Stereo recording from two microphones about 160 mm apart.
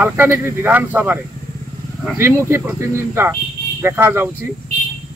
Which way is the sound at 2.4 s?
15° right (ahead or behind).